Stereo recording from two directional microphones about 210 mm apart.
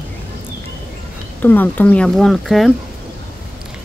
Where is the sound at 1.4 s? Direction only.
10° left (ahead or behind).